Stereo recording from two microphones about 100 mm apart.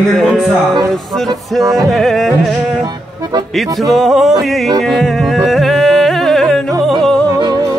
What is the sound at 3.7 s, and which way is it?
Music, centre (ahead or behind).